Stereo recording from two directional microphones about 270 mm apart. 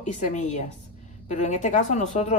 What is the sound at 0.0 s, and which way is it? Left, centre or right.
A woman's voice, left.